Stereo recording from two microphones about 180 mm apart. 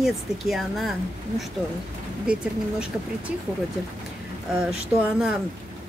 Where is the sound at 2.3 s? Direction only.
5° right (ahead or behind).